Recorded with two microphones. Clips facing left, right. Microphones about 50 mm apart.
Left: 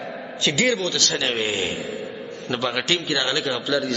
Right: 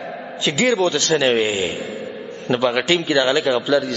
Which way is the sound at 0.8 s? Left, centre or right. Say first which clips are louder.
Right 7 dB; right.